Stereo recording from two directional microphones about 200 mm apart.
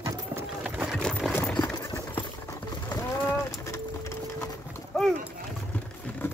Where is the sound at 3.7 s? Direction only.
15° left (ahead or behind).